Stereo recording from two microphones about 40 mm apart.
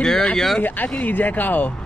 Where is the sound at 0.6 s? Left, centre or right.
Left.